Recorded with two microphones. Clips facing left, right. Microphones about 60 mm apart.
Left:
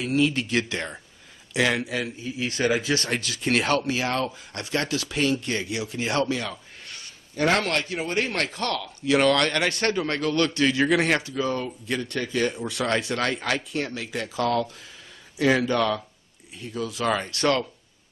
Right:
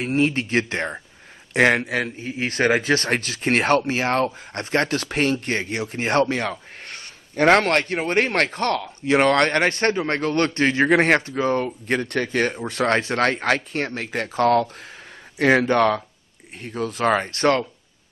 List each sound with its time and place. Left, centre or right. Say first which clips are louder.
0.0 s a man's voice: right 2 dB; right